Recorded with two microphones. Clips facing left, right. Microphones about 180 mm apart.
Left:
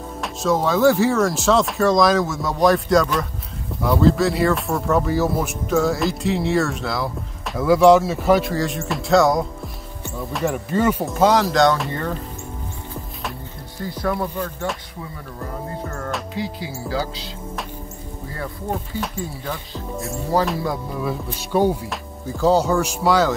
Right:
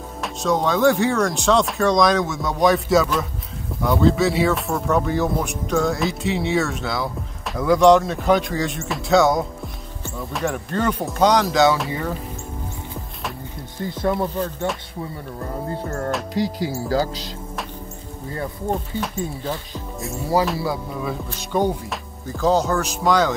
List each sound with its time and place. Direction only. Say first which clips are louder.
0.2 s speech: left 1 dB; centre (ahead or behind)
13.8 s speech: right 2 dB; 25° right (ahead or behind)
14.1 s music: right 2 dB; 10° right (ahead or behind)
16.3 s speech: right 5 dB; 40° right (ahead or behind)
19.1 s speech: right 2 dB; 20° right (ahead or behind)
20.5 s speech: even; 5° right (ahead or behind)